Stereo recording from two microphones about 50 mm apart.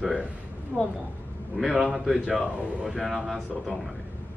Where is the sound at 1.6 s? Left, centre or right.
Centre.